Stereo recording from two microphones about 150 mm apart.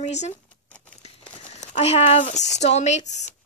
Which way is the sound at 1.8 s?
45° left (ahead or behind).